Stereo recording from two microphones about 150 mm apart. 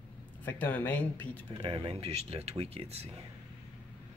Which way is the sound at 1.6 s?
35° right (ahead or behind).